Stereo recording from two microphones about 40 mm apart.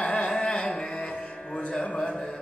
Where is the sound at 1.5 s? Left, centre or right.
Left.